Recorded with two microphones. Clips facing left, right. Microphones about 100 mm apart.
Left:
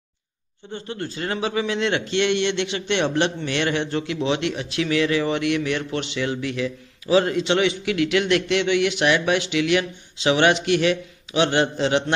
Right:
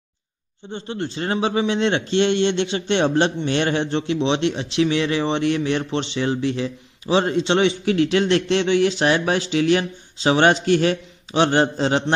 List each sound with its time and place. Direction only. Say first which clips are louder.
0.7 s a man's voice: right 3 dB; 25° right (ahead or behind)